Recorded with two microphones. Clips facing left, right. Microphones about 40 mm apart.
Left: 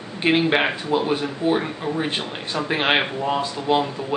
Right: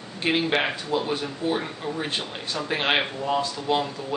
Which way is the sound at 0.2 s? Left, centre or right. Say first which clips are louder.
Left 5 dB; centre.